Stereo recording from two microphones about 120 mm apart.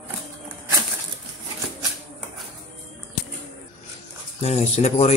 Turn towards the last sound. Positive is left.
turn(degrees=65)  # may be behind; listen again after turning